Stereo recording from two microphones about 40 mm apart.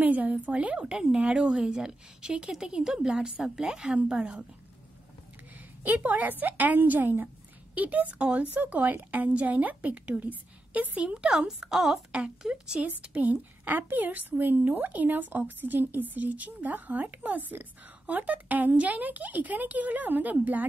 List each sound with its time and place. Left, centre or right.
0.0 s a woman's voice: right; by 3.9 s centre
3.9 s a woman's voice: right
6.0 s a woman's voice: right
7.7 s speech: right
8.5 s a woman's voice: right
10.2 s a sound: right
11.0 s a woman's voice: right
13.1 s a woman's voice: right